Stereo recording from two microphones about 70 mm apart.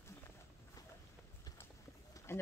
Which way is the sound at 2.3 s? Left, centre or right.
Left.